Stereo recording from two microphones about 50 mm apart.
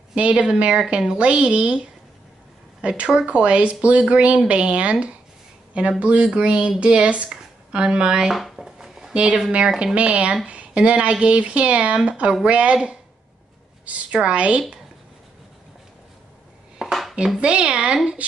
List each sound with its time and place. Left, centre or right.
0.1 s speech: right
2.8 s speech: right
8.5 s a sound: centre
9.1 s a woman's voice: right
16.8 s dishes: centre
17.4 s speech: right